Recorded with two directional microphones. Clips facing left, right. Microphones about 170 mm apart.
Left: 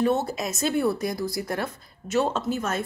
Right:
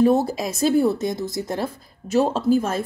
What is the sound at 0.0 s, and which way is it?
Speech, 35° right (ahead or behind).